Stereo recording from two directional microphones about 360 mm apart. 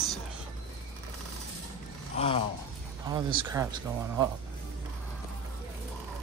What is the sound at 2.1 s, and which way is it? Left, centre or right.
Speech, centre.